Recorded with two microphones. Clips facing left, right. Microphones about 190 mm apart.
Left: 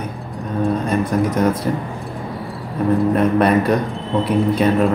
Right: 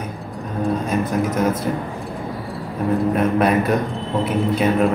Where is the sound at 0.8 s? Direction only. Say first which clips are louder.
Left 2 dB; 5° right (ahead or behind).